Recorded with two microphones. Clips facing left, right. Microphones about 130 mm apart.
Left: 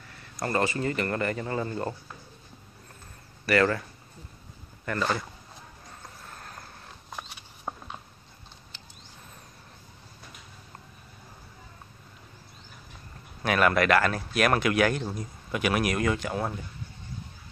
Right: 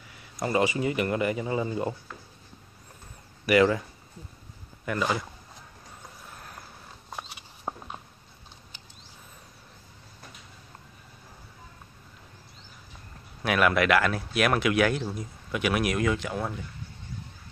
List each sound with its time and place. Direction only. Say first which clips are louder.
0.1 s a man's voice: right 2 dB; 10° right (ahead or behind)
3.4 s a man's voice: right 3 dB; 10° right (ahead or behind)
4.8 s a man's voice: right 1 dB; 10° right (ahead or behind)
6.2 s vehicle: left 1 dB; 10° right (ahead or behind)
7.1 s a sound: right 1 dB; centre (ahead or behind)
7.7 s a sound: right 2 dB; 15° right (ahead or behind)
13.4 s speech: even; 5° right (ahead or behind)